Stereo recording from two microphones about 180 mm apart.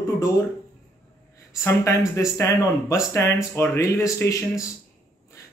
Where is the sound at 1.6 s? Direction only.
15° left (ahead or behind).